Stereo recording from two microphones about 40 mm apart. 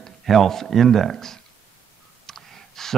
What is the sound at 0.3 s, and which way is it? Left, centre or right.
Speech, centre.